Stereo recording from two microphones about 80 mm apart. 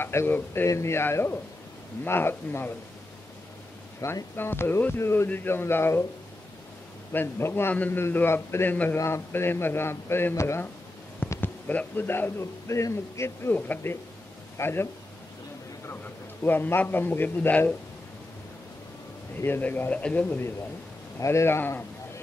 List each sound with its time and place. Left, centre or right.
0.0 s a man's voice: left
4.0 s speech: left
7.1 s speech: left
7.7 s a man's voice: centre
11.4 s a man's voice: left
13.6 s a man's voice: left
19.4 s speech: left
21.2 s a man's voice: left